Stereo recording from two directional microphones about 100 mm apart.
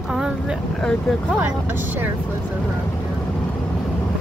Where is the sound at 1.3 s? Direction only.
20° right (ahead or behind).